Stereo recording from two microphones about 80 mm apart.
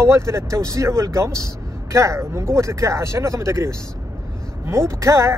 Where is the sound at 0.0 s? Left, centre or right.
Right.